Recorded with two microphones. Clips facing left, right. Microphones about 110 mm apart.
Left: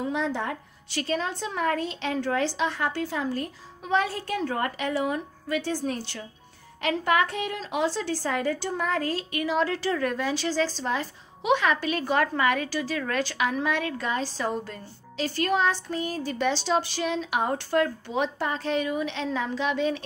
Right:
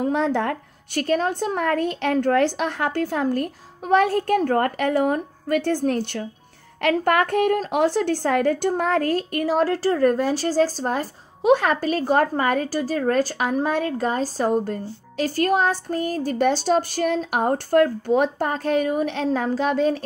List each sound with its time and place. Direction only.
0.0 s speech: 55° right (ahead or behind)